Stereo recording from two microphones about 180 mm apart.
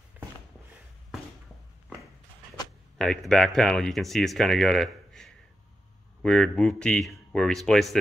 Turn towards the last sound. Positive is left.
turn(degrees=0)  # may be behind; listen again after turning